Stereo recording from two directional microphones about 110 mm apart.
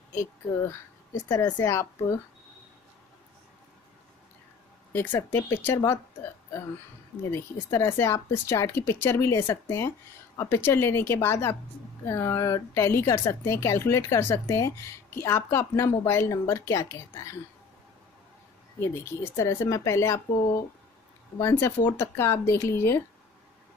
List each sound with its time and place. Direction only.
0.1 s speech: 25° left (ahead or behind)
4.9 s speech: 20° left (ahead or behind)
7.2 s speech: 25° left (ahead or behind)
18.8 s speech: 25° left (ahead or behind)
21.4 s speech: 25° left (ahead or behind)